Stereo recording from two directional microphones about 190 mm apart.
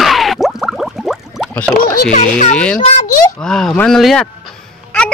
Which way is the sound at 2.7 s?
45° left (ahead or behind).